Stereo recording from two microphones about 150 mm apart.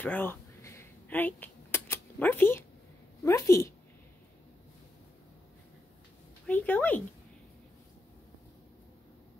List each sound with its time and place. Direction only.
0.0 s a sound: 10° left (ahead or behind)
3.3 s speech: 20° left (ahead or behind)
6.4 s speech: 10° left (ahead or behind)